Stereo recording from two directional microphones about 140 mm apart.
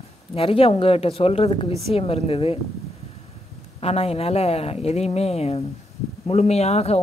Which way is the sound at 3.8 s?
45° left (ahead or behind).